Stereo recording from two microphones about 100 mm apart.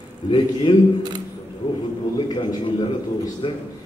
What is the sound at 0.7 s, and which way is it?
Speech, 50° left (ahead or behind).